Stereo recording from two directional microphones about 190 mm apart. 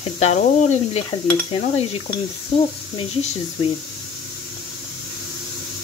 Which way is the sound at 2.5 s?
30° left (ahead or behind).